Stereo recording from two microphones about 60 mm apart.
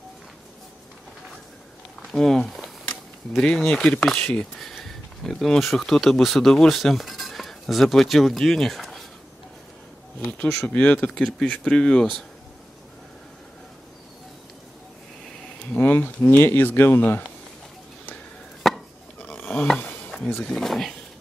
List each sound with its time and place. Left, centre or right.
2.1 s speech: centre
4.6 s speech: centre
10.2 s speech: left
15.7 s a sound: left
16.3 s speech: left
18.6 s chopping: centre
19.2 s a sound: left
20.4 s speech: centre